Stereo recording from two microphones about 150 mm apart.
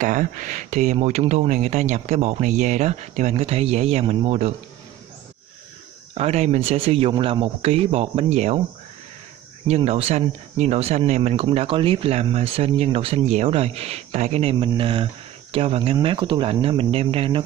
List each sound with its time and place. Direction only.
0.0 s speech: 60° right (ahead or behind)
6.1 s speech: 45° right (ahead or behind)
9.7 s speech: 45° right (ahead or behind)
11.5 s speech: 35° right (ahead or behind)